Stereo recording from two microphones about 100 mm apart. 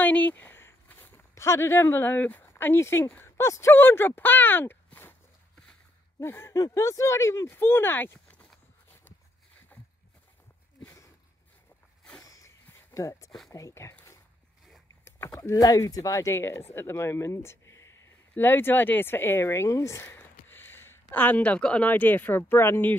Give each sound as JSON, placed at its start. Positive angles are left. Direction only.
{"t": 0.0, "sound": "speech", "side_deg": 15}
{"t": 6.2, "sound": "speech", "side_deg": 25}
{"t": 12.2, "sound": "a sound", "side_deg": 35}
{"t": 13.5, "sound": "speech", "side_deg": 35}
{"t": 15.0, "sound": "speech", "side_deg": 30}